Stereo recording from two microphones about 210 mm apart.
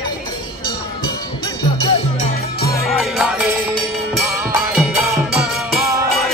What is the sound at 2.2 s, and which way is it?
Music, 45° left (ahead or behind).